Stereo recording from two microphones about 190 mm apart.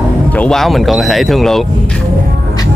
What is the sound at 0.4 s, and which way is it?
Speech, centre (ahead or behind).